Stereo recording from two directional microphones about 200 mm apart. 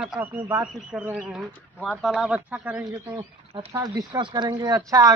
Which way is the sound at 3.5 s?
20° right (ahead or behind).